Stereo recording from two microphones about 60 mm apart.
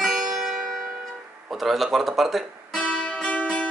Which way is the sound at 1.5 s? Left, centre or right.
Centre.